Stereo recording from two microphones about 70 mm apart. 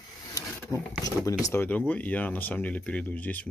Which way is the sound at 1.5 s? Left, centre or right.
Left.